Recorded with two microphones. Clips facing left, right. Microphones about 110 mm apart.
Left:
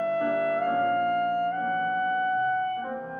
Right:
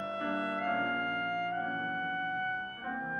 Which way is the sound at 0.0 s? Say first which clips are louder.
Left 10 dB; 45° left (ahead or behind).